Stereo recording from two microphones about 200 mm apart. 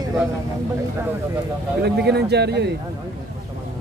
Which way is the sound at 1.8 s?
55° right (ahead or behind).